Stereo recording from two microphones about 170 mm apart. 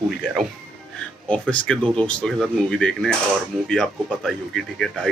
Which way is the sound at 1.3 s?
5° left (ahead or behind).